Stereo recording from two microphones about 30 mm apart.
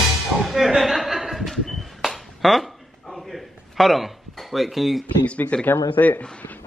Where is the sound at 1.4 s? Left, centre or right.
Centre.